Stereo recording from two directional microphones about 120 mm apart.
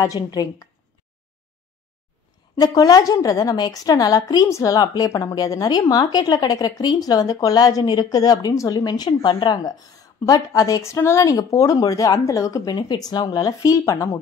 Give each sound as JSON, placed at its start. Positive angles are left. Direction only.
{"t": 0.0, "sound": "a woman's voice", "side_deg": 30}
{"t": 2.6, "sound": "a woman's voice", "side_deg": 30}